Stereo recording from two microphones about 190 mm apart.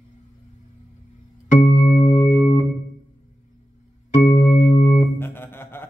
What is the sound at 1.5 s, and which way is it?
Music, 45° left (ahead or behind).